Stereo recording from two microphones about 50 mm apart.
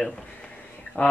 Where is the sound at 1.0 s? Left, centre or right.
Left.